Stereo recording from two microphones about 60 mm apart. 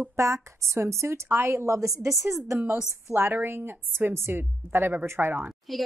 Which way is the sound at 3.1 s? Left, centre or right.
Right.